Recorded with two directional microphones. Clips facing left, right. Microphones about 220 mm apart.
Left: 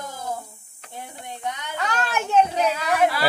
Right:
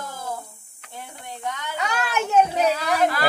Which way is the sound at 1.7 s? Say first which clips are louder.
Even; 10° right (ahead or behind).